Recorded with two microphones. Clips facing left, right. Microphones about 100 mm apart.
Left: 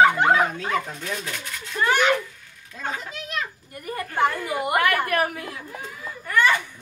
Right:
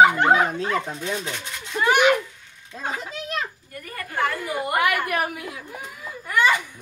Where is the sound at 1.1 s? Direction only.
20° right (ahead or behind).